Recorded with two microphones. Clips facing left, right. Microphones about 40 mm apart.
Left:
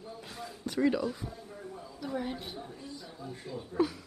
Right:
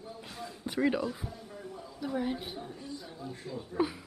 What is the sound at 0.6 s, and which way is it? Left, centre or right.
Speech, centre.